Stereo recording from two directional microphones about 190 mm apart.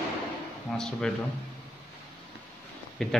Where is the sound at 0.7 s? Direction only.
5° left (ahead or behind).